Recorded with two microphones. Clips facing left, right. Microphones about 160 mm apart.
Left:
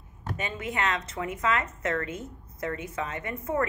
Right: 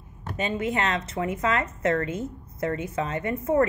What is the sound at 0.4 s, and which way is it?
A woman's voice, 25° right (ahead or behind).